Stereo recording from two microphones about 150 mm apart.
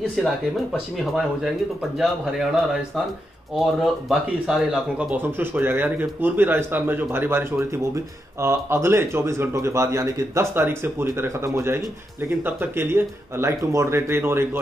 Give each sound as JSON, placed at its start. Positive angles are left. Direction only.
{"t": 0.0, "sound": "speech", "side_deg": 0}
{"t": 3.5, "sound": "speech", "side_deg": -5}
{"t": 5.1, "sound": "speech", "side_deg": -15}